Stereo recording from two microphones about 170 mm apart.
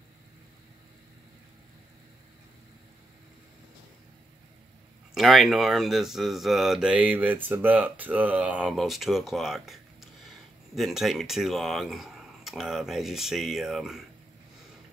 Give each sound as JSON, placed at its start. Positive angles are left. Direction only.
{"t": 5.1, "sound": "speech", "side_deg": 0}